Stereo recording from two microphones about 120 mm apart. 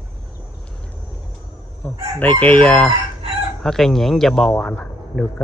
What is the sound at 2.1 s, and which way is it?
Chicken, 15° left (ahead or behind).